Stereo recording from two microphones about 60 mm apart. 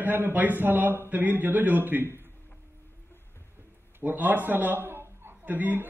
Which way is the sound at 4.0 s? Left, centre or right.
Right.